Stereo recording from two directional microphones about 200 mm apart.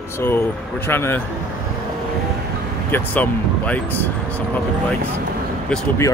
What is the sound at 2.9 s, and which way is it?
Speech, 10° left (ahead or behind).